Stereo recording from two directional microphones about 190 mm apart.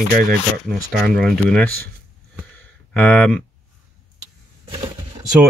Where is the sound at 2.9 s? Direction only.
5° left (ahead or behind).